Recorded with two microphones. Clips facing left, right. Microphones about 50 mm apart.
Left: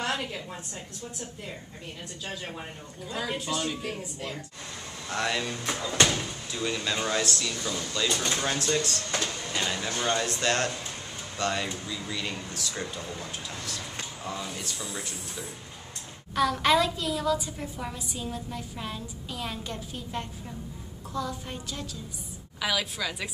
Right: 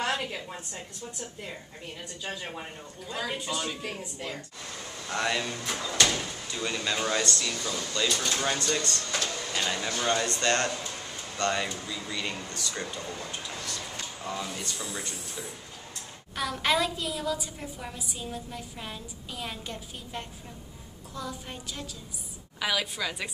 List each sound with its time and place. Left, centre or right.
0.0 s a sound: centre
2.2 s a woman's voice: centre
5.7 s speech: centre
6.5 s a woman's voice: centre
8.1 s speech: centre
8.4 s a woman's voice: centre
9.2 s vehicle: centre
9.7 s a woman's voice: centre